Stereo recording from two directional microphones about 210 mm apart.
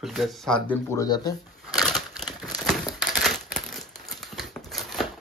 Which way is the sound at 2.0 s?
Centre (ahead or behind).